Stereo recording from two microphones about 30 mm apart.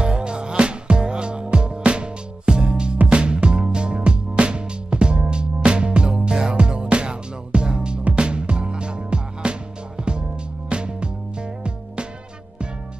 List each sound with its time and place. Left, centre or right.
0.0 s music: right